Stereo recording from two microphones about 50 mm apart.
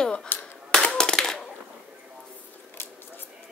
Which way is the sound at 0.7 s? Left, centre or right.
Centre.